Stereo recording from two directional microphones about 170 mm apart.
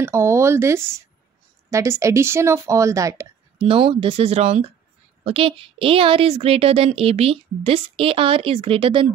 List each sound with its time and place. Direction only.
0.0 s speech: 15° right (ahead or behind)
3.6 s a woman's voice: 30° right (ahead or behind)